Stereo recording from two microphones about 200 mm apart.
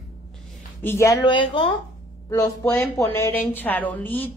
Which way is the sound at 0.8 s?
15° left (ahead or behind).